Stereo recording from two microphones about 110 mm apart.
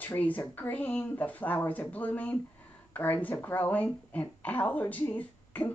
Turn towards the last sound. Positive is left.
turn(degrees=15)  # may be behind; listen again after turning